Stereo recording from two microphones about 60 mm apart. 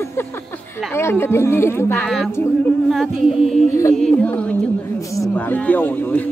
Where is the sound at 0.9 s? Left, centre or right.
Left.